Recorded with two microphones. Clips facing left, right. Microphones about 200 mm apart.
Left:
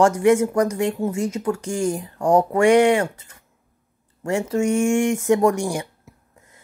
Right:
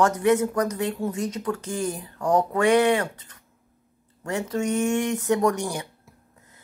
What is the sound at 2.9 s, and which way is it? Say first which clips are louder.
Speech: left 4 dB; 25° left (ahead or behind).